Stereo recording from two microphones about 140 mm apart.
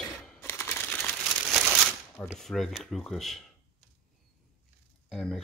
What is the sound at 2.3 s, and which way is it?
Speech, 5° left (ahead or behind).